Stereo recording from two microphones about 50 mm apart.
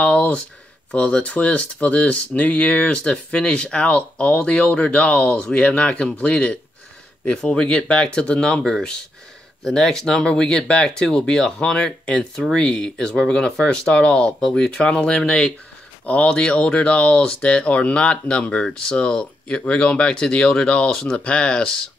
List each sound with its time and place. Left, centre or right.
0.0 s a sound: left
0.9 s speech: left
9.6 s speech: centre